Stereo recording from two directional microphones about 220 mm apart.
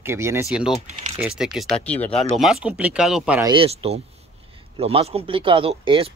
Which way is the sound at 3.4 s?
25° right (ahead or behind).